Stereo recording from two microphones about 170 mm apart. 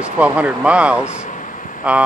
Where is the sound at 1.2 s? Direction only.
50° left (ahead or behind).